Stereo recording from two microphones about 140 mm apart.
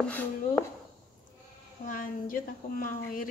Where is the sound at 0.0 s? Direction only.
10° left (ahead or behind).